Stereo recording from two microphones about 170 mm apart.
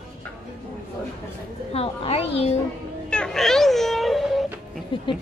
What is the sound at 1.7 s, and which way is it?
Speech, 35° left (ahead or behind).